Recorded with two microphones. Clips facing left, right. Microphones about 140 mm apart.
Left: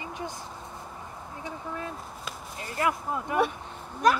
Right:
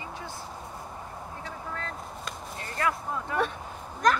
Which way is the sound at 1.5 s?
15° left (ahead or behind).